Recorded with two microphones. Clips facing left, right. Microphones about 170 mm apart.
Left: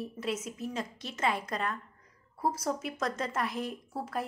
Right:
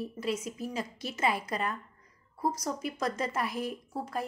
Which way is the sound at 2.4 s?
5° left (ahead or behind).